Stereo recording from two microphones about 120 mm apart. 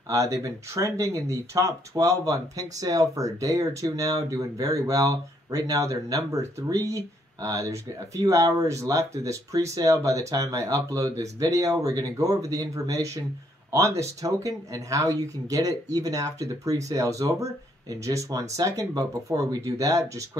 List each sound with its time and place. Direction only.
0.1 s speech: 25° right (ahead or behind)